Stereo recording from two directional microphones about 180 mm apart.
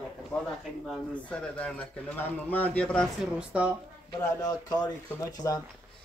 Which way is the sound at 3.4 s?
5° right (ahead or behind).